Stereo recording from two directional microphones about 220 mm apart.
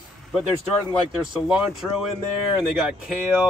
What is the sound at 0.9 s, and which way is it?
Speech, centre (ahead or behind).